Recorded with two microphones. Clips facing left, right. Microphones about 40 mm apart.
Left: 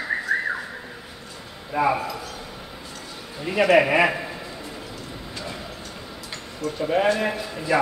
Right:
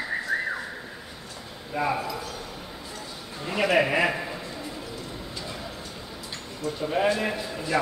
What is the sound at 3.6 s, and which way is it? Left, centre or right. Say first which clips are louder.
Speech: left 5 dB; left.